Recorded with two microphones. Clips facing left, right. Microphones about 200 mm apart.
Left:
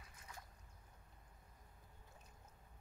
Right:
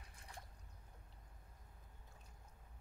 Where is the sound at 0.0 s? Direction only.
30° right (ahead or behind).